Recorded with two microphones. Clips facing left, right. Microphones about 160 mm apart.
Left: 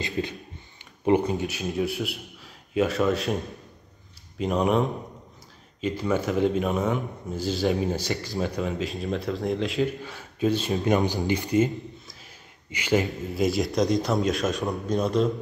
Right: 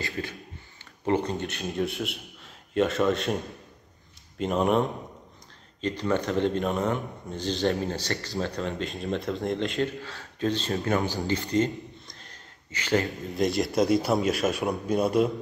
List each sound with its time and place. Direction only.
0.0 s speech: 20° left (ahead or behind)
1.3 s speech: centre (ahead or behind)
4.4 s a man's voice: centre (ahead or behind)